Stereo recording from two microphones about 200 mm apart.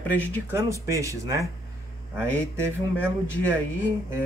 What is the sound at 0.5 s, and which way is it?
Speech, 15° right (ahead or behind).